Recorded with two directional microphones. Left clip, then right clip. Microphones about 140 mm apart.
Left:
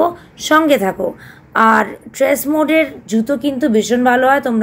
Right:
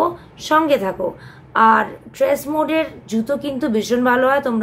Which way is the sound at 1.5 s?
45° left (ahead or behind).